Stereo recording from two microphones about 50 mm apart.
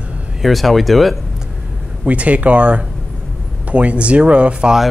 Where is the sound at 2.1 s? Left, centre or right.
Right.